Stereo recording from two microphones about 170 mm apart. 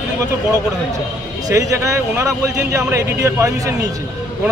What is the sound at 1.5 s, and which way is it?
A man's voice, 20° right (ahead or behind).